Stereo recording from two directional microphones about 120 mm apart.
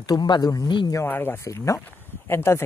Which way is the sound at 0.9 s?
20° left (ahead or behind).